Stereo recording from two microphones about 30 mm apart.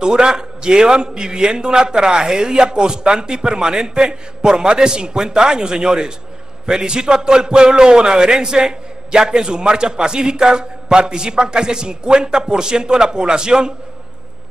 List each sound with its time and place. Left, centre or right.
0.0 s a man's voice: right